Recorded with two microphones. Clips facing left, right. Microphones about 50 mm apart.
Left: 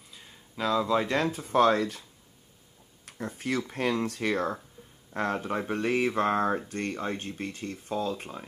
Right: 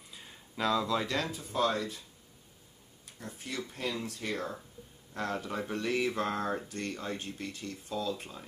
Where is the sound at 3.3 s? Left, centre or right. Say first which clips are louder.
Left 8 dB; left.